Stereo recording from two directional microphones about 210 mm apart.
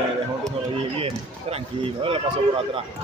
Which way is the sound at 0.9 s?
25° right (ahead or behind).